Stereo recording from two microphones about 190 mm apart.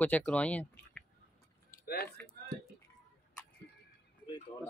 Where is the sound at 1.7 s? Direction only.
55° left (ahead or behind).